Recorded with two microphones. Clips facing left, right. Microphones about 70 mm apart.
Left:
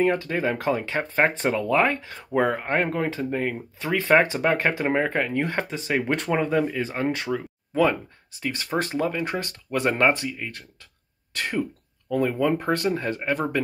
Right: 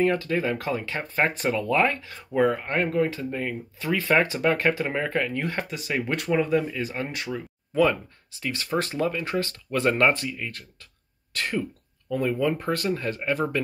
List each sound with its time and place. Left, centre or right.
0.0 s speech: left
12.2 s speech: left
12.5 s speech: left